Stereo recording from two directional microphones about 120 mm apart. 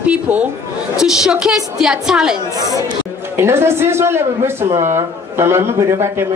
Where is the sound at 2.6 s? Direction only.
30° right (ahead or behind).